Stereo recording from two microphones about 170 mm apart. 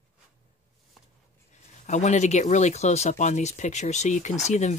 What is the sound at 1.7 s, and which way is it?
Speech, 45° left (ahead or behind).